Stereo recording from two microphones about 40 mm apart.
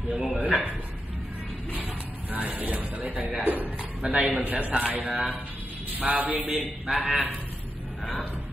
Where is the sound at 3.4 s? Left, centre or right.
Right.